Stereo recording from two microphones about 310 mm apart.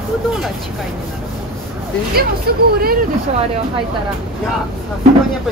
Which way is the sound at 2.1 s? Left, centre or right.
Right.